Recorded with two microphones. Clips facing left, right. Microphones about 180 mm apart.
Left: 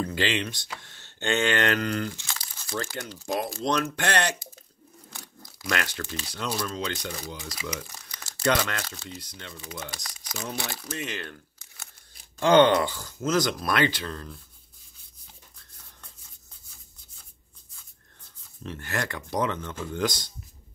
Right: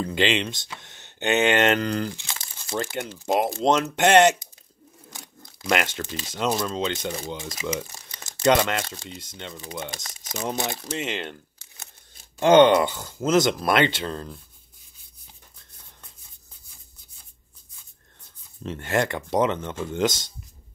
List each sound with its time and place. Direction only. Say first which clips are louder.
0.0 s speech: right 4 dB; 25° right (ahead or behind)
18.7 s speech: right 8 dB; 25° right (ahead or behind)